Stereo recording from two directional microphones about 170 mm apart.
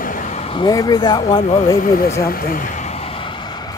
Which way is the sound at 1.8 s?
55° left (ahead or behind).